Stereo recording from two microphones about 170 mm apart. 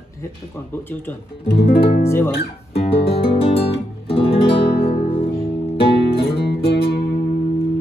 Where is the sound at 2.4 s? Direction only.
35° left (ahead or behind).